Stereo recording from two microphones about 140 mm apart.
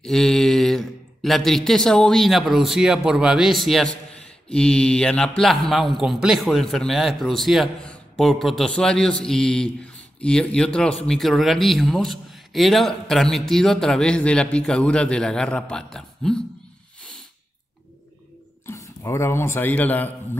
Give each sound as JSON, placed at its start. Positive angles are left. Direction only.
{"t": 0.0, "sound": "a man's voice", "side_deg": 5}
{"t": 18.7, "sound": "a man's voice", "side_deg": 20}